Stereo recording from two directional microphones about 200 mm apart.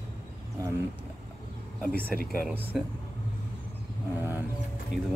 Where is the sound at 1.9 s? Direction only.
50° right (ahead or behind).